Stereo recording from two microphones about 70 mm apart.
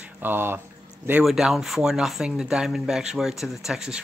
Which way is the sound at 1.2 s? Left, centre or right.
Centre.